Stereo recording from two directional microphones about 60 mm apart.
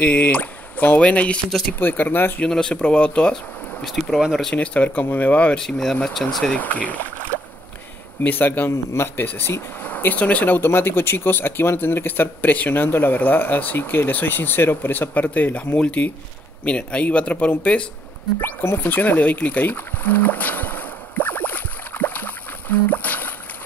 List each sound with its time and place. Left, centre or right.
0.0 s speech: left
1.8 s speech: left
2.4 s speech: centre
3.8 s speech: centre
4.6 s speech: left
5.6 s speech: centre
6.6 s speech: left
18.4 s a sound: left